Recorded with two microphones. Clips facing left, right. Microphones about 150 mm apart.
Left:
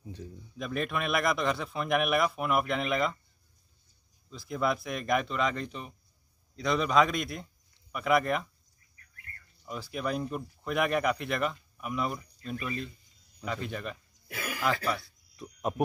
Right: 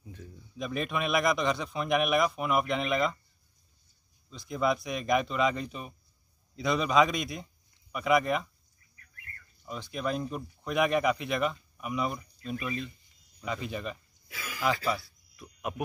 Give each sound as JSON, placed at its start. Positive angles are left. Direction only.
{"t": 0.0, "sound": "a sound", "side_deg": 30}
{"t": 0.6, "sound": "speech", "side_deg": 0}
{"t": 4.3, "sound": "speech", "side_deg": 0}
{"t": 9.7, "sound": "speech", "side_deg": 5}
{"t": 14.2, "sound": "throat clearing", "side_deg": 60}
{"t": 14.6, "sound": "speech", "side_deg": 0}
{"t": 15.0, "sound": "a sound", "side_deg": 30}